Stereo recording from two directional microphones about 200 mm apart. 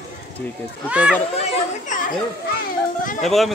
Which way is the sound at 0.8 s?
5° right (ahead or behind).